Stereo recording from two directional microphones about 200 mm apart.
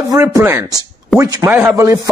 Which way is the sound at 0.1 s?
15° right (ahead or behind).